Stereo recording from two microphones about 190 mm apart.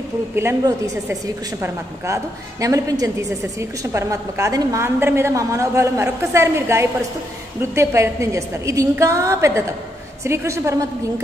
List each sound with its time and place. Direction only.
0.4 s a woman's voice: 15° right (ahead or behind)